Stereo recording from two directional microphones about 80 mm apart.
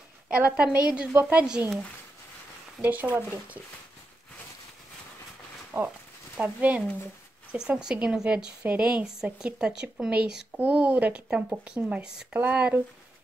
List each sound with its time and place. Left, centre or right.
0.3 s speech: centre
2.8 s speech: right
5.7 s speech: right
6.4 s speech: centre